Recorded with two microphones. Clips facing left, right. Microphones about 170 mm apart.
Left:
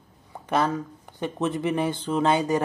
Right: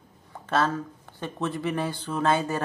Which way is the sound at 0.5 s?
15° left (ahead or behind).